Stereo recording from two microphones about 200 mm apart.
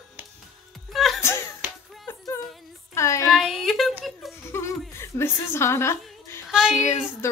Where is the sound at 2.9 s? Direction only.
15° left (ahead or behind).